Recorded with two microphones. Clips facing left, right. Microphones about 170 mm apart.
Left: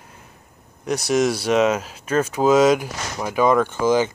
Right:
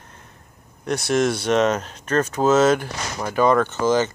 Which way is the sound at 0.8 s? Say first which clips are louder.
Left 1 dB; 10° left (ahead or behind).